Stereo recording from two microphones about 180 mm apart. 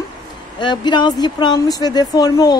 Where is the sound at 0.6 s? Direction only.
25° left (ahead or behind).